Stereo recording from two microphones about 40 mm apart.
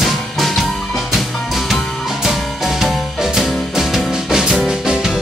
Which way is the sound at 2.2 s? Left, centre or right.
Centre.